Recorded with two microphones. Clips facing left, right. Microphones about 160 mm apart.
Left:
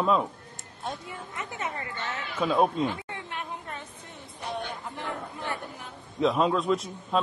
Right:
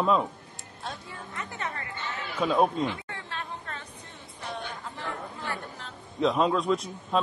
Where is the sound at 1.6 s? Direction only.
20° left (ahead or behind).